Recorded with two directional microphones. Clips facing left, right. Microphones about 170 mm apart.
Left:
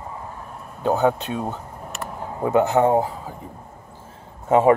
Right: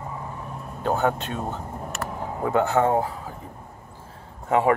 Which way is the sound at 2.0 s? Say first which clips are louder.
Even; 15° left (ahead or behind).